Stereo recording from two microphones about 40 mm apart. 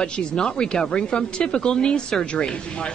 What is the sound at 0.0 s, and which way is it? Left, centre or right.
Speech, centre.